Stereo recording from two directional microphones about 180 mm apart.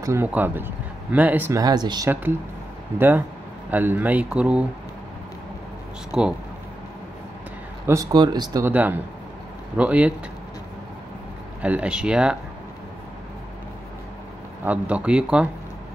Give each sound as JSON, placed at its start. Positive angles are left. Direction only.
{"t": 0.0, "sound": "speech", "side_deg": -15}
{"t": 3.0, "sound": "speech", "side_deg": -10}
{"t": 6.1, "sound": "speech", "side_deg": -5}
{"t": 7.8, "sound": "speech", "side_deg": -15}
{"t": 8.7, "sound": "speech", "side_deg": -10}
{"t": 11.6, "sound": "speech", "side_deg": -5}
{"t": 14.6, "sound": "speech", "side_deg": -10}